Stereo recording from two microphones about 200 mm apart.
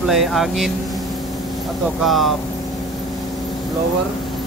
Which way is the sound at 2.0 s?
Centre (ahead or behind).